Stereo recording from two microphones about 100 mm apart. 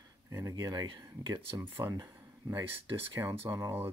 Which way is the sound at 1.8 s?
25° right (ahead or behind).